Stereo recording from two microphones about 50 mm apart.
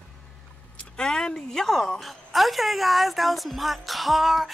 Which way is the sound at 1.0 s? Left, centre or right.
Centre.